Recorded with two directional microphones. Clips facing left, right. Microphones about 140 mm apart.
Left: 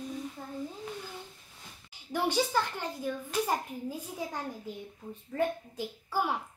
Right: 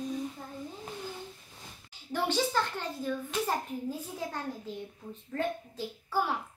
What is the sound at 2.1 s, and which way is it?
A child's voice, 10° left (ahead or behind).